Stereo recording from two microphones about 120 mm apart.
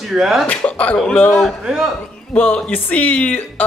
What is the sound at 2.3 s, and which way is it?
Speech, 10° left (ahead or behind).